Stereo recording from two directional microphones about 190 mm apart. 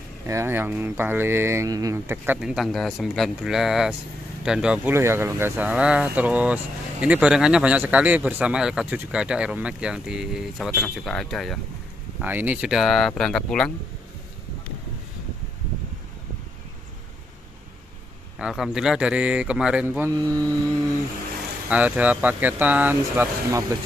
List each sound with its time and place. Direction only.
0.3 s speech: 15° right (ahead or behind); by 13.7 s 5° left (ahead or behind)
18.4 s speech: 5° right (ahead or behind)
20.1 s speech: 20° right (ahead or behind)
21.6 s speech: 5° right (ahead or behind)